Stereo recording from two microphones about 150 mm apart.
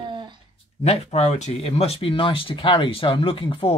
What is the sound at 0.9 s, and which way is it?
Speech, 45° left (ahead or behind).